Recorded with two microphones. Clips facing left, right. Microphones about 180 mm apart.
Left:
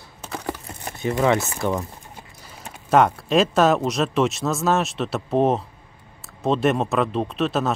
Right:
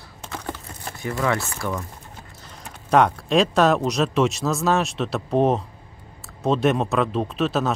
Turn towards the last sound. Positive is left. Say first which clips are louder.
# even
turn(degrees=0)  # may be behind; listen again after turning